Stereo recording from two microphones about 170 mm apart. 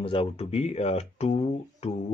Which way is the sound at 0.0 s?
35° left (ahead or behind).